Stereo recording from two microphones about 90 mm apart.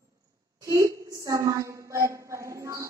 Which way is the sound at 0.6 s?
35° right (ahead or behind).